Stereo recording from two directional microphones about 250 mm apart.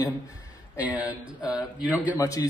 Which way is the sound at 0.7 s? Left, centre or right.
Centre.